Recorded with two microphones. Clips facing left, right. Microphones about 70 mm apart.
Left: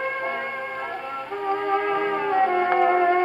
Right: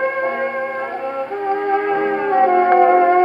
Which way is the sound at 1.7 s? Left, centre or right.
Right.